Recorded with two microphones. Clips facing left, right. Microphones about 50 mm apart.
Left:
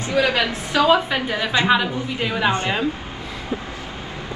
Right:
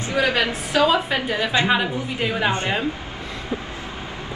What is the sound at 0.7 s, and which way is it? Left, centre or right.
Speech, left.